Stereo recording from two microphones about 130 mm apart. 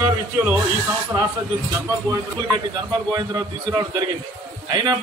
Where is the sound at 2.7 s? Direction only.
35° right (ahead or behind).